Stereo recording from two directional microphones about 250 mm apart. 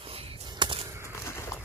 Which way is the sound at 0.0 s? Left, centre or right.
Right.